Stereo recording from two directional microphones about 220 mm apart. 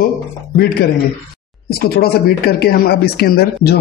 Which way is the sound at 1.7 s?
45° left (ahead or behind).